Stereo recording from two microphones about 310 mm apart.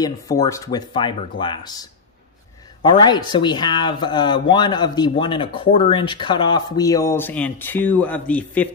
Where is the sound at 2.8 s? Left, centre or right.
Centre.